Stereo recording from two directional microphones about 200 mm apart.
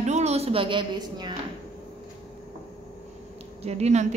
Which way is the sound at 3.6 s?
30° right (ahead or behind).